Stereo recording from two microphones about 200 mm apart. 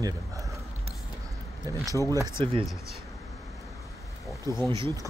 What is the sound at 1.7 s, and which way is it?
Speech, 15° right (ahead or behind).